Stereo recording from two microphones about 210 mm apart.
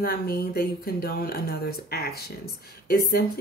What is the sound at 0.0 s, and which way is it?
A woman's voice, 45° left (ahead or behind).